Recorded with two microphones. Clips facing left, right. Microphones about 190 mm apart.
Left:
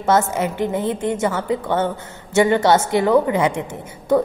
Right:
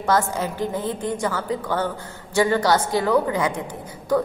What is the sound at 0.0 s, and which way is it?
A woman's voice, 25° left (ahead or behind).